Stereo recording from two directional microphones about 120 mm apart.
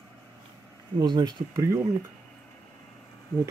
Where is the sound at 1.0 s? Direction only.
35° right (ahead or behind).